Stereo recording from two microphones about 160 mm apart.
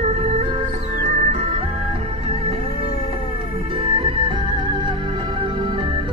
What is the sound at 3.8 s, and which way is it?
Music, 35° right (ahead or behind).